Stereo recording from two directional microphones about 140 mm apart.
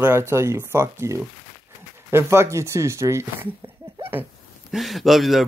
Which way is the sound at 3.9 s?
15° right (ahead or behind).